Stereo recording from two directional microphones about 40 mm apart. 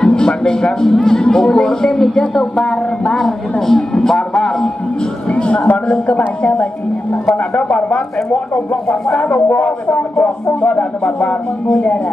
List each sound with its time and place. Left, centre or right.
0.0 s speech: centre
5.3 s a woman's voice: left